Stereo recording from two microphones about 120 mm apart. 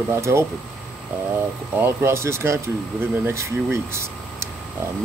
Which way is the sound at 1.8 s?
20° right (ahead or behind).